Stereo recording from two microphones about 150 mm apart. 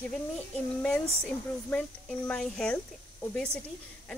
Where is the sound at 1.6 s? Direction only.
10° left (ahead or behind).